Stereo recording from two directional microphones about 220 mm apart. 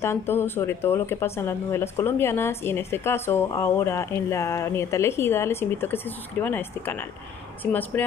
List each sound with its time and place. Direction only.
0.0 s speech: 10° left (ahead or behind)